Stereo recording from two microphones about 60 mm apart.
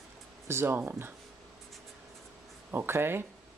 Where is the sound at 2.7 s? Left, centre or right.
Right.